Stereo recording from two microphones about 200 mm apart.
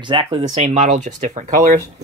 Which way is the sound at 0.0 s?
25° right (ahead or behind).